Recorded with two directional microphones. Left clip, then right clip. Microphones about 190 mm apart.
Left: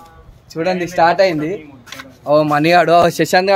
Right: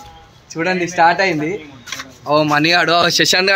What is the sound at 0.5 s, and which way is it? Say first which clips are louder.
Speech: even; 55° left (ahead or behind).